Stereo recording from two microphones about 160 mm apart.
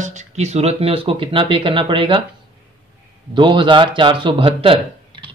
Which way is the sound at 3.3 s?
30° right (ahead or behind).